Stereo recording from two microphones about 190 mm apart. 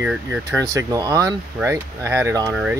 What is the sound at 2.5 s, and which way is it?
Speech, 5° right (ahead or behind).